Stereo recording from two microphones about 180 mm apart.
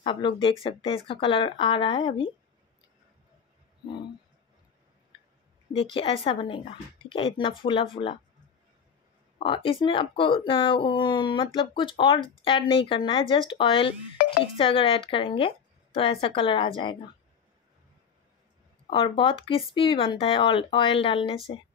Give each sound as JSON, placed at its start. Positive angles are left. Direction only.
{"t": 0.0, "sound": "speech", "side_deg": 25}
{"t": 5.7, "sound": "speech", "side_deg": 30}
{"t": 9.4, "sound": "speech", "side_deg": 30}
{"t": 18.9, "sound": "speech", "side_deg": 30}